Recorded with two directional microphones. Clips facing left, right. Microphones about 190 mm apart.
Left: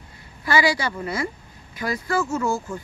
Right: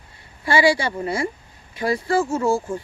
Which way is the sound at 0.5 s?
30° right (ahead or behind).